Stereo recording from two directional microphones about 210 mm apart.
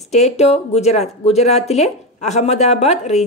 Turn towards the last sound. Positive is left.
turn(degrees=30)  # may be behind; listen again after turning